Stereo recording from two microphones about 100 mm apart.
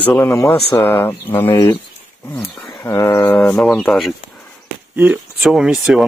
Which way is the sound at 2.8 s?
30° left (ahead or behind).